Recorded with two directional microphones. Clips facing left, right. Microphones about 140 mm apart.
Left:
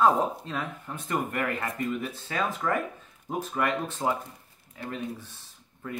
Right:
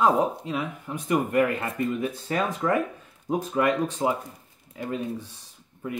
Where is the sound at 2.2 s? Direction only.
35° right (ahead or behind).